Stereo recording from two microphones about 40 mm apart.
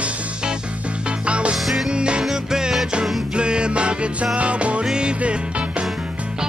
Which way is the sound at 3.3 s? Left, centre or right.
Right.